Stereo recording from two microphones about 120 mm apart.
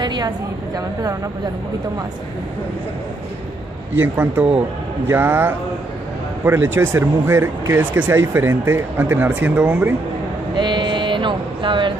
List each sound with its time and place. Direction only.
0.0 s a woman's voice: 40° right (ahead or behind)
4.0 s speech: 15° right (ahead or behind)
10.5 s a sound: 40° right (ahead or behind)